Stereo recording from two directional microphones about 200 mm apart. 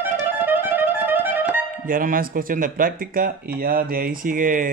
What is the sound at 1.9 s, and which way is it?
Speech, 45° right (ahead or behind).